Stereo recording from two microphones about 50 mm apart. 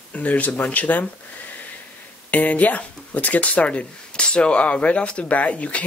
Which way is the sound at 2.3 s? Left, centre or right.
Left.